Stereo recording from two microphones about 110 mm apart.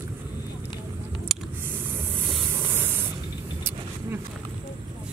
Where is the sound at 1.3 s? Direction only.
Centre (ahead or behind).